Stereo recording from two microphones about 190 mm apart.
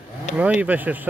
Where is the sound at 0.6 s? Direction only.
10° right (ahead or behind).